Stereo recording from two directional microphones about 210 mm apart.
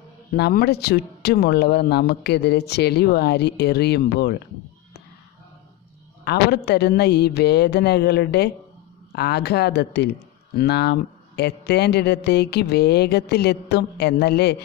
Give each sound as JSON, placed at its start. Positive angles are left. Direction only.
{"t": 0.4, "sound": "speech", "side_deg": 50}
{"t": 6.2, "sound": "speech", "side_deg": 50}